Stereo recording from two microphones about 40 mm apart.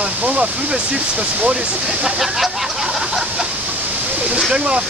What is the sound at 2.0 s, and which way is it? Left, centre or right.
Speech, centre.